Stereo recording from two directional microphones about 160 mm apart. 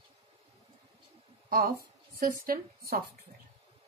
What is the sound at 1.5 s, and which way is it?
A woman's voice, 65° right (ahead or behind).